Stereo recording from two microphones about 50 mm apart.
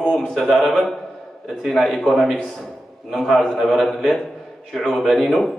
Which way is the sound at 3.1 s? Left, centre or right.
Centre.